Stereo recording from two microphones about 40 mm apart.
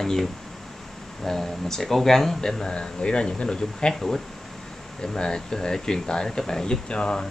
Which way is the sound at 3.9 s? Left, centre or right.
Centre.